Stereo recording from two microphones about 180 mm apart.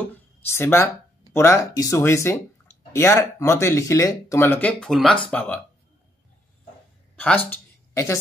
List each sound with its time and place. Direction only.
0.5 s speech: 15° left (ahead or behind)
7.2 s speech: 10° left (ahead or behind)